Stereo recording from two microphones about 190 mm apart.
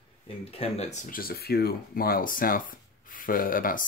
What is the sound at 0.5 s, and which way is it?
Speech, 35° left (ahead or behind).